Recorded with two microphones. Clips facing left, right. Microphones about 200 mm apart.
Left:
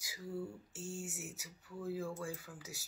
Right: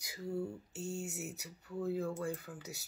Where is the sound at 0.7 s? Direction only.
65° right (ahead or behind).